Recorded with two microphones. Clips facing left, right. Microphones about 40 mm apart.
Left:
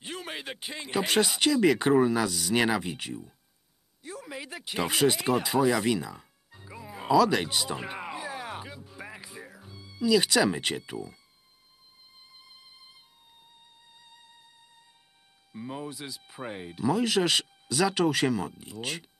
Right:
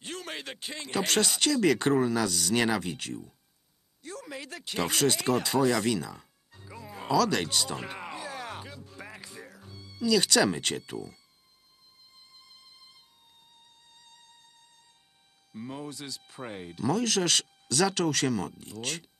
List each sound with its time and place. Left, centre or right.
0.0 s speech: centre
4.0 s a sound: centre
12.3 s music: centre
15.5 s speech: centre